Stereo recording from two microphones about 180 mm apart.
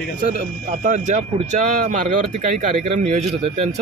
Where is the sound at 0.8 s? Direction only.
45° right (ahead or behind).